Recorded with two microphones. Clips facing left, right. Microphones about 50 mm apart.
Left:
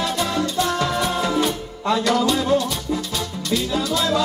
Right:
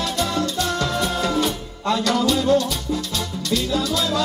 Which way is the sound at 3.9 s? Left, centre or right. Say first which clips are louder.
Left 2 dB; centre.